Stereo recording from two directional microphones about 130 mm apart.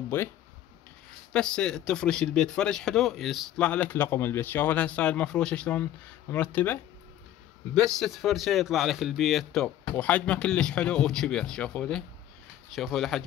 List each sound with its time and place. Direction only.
0.1 s speech: 15° left (ahead or behind)
1.3 s speech: 5° left (ahead or behind)
7.7 s speech: 5° left (ahead or behind)